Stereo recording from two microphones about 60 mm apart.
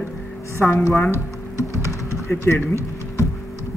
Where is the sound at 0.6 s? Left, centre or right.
Left.